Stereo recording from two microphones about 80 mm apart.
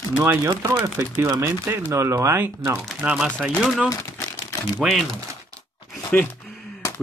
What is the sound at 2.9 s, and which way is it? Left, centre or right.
Speech, centre.